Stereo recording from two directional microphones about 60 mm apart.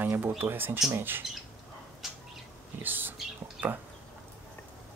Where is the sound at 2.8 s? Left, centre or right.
Right.